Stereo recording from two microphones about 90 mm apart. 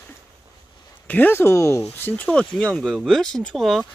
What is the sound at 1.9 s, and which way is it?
Speech, 20° left (ahead or behind).